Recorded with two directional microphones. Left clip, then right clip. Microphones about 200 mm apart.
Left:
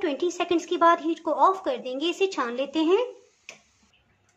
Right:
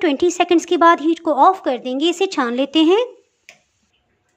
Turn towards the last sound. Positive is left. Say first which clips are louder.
# right 8 dB
turn(degrees=-35)  # may be behind; listen again after turning